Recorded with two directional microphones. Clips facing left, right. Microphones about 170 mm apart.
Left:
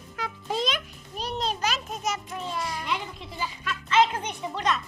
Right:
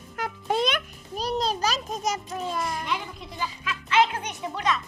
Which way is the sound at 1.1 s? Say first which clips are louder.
Right 4 dB; 40° right (ahead or behind).